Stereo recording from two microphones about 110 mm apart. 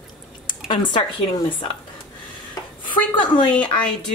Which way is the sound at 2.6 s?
35° left (ahead or behind).